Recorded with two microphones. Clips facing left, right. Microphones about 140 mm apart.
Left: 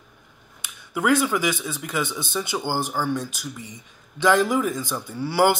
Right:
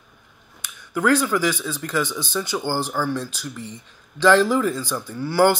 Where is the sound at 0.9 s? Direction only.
15° left (ahead or behind).